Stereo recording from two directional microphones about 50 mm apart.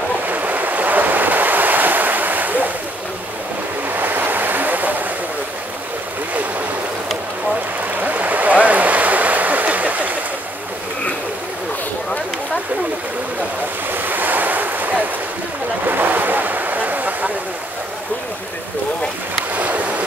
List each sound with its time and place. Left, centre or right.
0.3 s waves: right
3.9 s waves: right
8.0 s a sound: right
13.9 s waves: right
15.8 s a sound: right
19.5 s boat: right